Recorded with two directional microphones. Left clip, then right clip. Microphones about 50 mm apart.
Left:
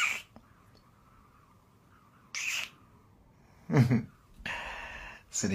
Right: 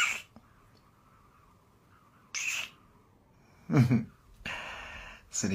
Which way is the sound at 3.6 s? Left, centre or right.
Centre.